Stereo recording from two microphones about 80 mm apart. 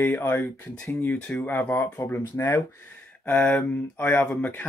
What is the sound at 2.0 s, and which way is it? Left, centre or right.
Speech, left.